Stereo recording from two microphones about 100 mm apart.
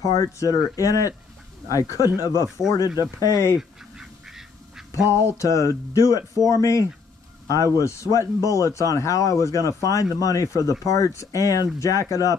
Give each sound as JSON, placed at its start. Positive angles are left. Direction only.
{"t": 0.0, "sound": "speech", "side_deg": 35}
{"t": 3.5, "sound": "duck", "side_deg": -5}
{"t": 5.4, "sound": "speech", "side_deg": 30}